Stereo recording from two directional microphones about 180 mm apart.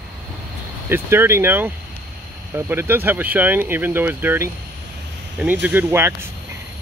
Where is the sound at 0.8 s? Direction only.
15° right (ahead or behind).